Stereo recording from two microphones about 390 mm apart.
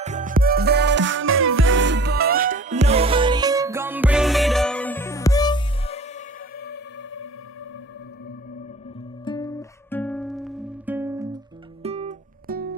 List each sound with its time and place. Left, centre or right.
0.0 s music: centre; by 7.2 s left
9.2 s music: centre; by 12.7 s right